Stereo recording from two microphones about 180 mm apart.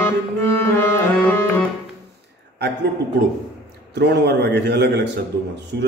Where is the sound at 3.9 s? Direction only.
70° right (ahead or behind).